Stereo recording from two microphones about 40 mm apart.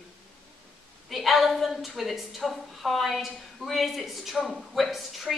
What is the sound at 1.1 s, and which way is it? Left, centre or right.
A woman's voice, centre.